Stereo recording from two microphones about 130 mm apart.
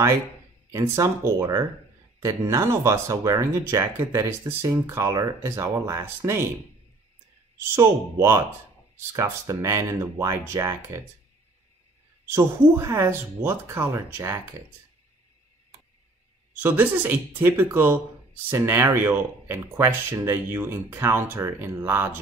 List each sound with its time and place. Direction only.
0.7 s speech: 25° right (ahead or behind)
7.7 s speech: 20° right (ahead or behind)
12.3 s speech: 20° right (ahead or behind)
16.6 s speech: 15° right (ahead or behind)